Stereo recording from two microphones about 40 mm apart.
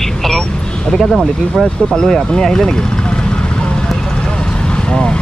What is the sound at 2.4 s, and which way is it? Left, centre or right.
Vehicle, centre.